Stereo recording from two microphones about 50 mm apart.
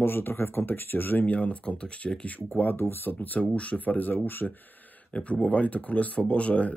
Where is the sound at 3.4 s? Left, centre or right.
Left.